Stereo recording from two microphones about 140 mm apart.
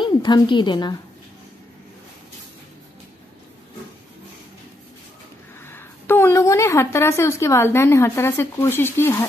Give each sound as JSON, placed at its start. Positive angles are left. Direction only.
{"t": 0.0, "sound": "a woman's voice", "side_deg": 35}
{"t": 5.6, "sound": "a woman's voice", "side_deg": 15}